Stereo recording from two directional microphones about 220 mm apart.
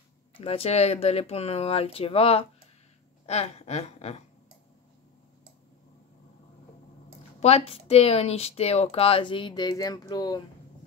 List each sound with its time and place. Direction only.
0.4 s speech: 25° left (ahead or behind)
7.3 s speech: 30° left (ahead or behind)